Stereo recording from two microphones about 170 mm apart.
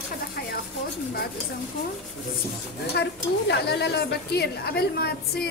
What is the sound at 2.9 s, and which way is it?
A woman's voice, 80° left.